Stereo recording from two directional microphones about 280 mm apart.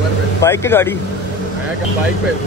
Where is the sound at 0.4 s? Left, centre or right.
Centre.